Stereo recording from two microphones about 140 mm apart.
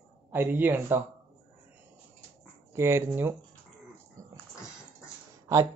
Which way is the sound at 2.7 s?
20° right (ahead or behind).